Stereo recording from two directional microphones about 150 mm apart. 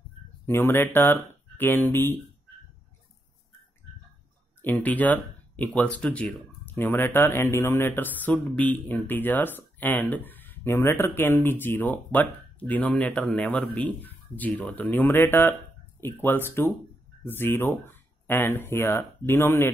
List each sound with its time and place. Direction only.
0.5 s speech: 15° left (ahead or behind)
4.6 s speech: 15° left (ahead or behind)